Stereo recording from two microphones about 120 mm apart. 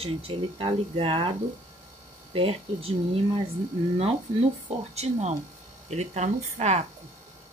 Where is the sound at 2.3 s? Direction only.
50° right (ahead or behind).